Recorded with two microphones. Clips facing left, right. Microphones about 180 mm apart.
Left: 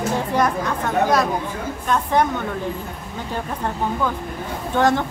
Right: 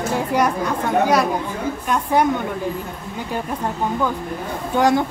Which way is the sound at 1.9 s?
10° right (ahead or behind).